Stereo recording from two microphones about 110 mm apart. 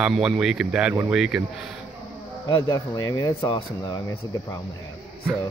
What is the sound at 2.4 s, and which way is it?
Speech, 30° left (ahead or behind).